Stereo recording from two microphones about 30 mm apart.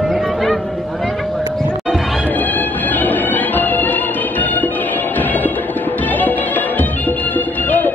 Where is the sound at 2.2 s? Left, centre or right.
Left.